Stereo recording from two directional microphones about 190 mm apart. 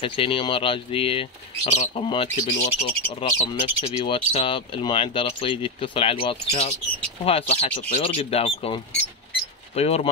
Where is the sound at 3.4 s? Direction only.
30° left (ahead or behind).